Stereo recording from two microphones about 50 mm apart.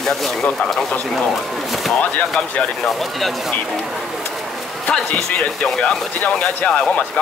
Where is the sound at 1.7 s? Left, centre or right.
Centre.